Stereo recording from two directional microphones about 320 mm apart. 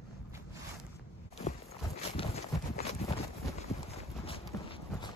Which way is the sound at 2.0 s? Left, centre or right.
Centre.